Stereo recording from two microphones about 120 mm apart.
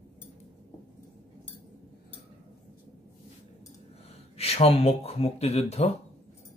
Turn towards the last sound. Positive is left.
turn(degrees=60)  # may be behind; listen again after turning